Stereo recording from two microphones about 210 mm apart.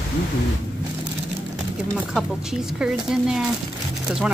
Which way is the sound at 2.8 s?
5° right (ahead or behind).